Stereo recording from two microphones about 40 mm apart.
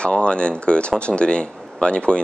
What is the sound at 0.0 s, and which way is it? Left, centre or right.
Speech, left.